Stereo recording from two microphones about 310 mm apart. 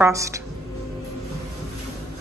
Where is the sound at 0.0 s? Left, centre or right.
Centre.